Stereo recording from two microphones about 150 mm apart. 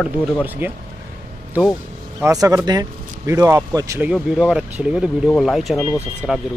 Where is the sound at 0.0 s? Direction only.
10° right (ahead or behind).